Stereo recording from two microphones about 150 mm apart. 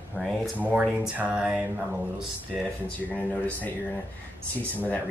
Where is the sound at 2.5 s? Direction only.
Centre (ahead or behind).